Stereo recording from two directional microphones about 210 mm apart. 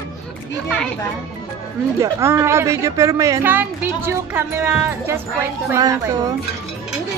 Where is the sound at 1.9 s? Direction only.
15° right (ahead or behind).